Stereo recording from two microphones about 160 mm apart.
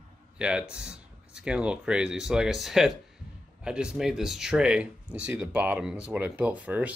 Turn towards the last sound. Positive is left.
turn(degrees=-10)  # may be behind; listen again after turning